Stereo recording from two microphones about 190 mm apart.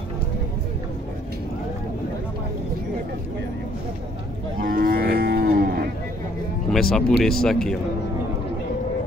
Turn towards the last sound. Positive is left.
turn(degrees=5)  # may be behind; listen again after turning